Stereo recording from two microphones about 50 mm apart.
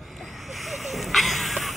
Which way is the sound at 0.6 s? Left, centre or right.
Centre.